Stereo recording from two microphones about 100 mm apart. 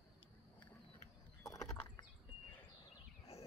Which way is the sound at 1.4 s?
35° left (ahead or behind).